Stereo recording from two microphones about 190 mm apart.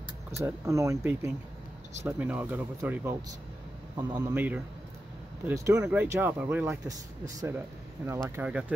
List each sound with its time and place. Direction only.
0.4 s speech: 15° right (ahead or behind)
5.4 s speech: 10° right (ahead or behind)